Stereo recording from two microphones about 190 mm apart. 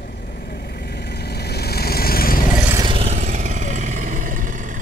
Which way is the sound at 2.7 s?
25° right (ahead or behind).